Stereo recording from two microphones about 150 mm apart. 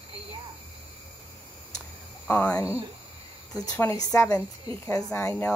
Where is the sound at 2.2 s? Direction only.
10° left (ahead or behind).